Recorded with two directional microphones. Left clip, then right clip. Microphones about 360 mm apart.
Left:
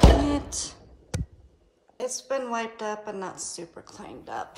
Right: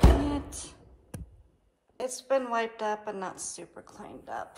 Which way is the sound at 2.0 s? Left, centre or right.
Centre.